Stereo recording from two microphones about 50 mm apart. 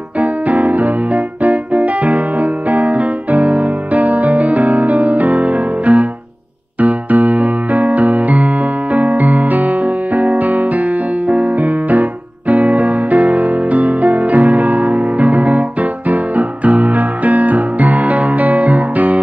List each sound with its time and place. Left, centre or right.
0.2 s music: right
6.8 s electric piano: right